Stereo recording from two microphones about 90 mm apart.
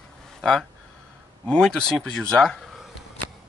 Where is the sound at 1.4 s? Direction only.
10° left (ahead or behind).